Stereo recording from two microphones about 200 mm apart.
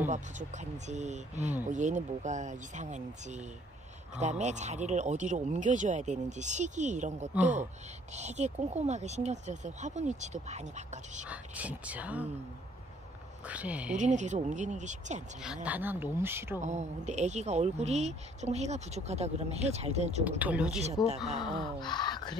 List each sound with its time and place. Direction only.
0.1 s a woman's voice: 35° right (ahead or behind)
11.2 s speech: 5° right (ahead or behind)
13.5 s speech: 5° right (ahead or behind)
13.9 s a woman's voice: 35° right (ahead or behind)
15.4 s speech: 5° right (ahead or behind)
16.6 s a woman's voice: 35° right (ahead or behind)
20.2 s speech: 10° right (ahead or behind)
21.4 s speech: 20° left (ahead or behind)